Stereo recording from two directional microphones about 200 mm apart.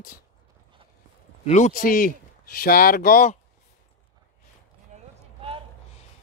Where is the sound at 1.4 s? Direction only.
35° left (ahead or behind).